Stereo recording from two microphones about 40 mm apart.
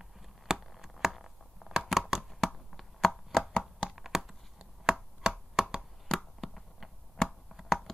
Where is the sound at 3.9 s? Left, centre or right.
Centre.